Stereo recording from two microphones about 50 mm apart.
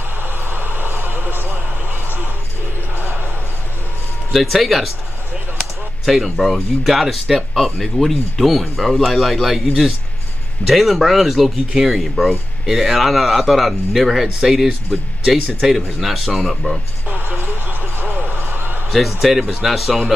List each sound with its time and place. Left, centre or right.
0.2 s vehicle: right
3.0 s basketball bounce: right
4.3 s speech: centre
17.1 s music: right
18.3 s a sound: right
18.9 s speech: centre